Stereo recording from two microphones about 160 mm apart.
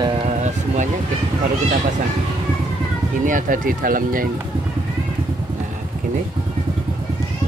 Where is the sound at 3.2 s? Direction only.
55° right (ahead or behind).